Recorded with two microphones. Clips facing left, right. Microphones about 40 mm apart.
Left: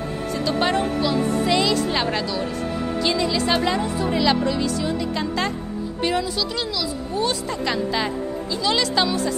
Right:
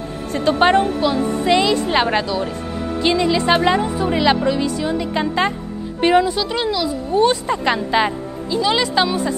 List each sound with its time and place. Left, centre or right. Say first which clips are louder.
0.3 s a woman's voice: right 7 dB; right
1.0 s a woman's voice: right 3 dB; centre
8.5 s speech: right 4 dB; centre